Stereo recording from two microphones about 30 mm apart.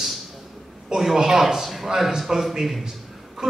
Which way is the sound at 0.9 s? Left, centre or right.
Centre.